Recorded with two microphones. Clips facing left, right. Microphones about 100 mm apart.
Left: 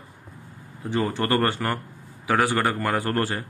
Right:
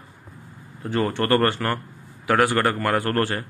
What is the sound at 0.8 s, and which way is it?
Speech, 5° left (ahead or behind).